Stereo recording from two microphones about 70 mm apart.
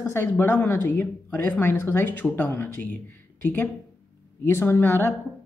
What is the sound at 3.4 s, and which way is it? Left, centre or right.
A woman's voice, left.